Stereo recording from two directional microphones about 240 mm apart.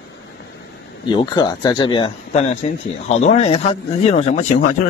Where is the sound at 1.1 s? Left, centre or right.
Centre.